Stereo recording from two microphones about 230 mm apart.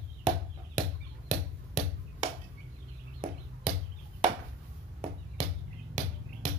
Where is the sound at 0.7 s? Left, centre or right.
Right.